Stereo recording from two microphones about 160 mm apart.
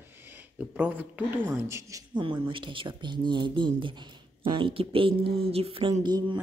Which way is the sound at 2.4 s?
30° right (ahead or behind).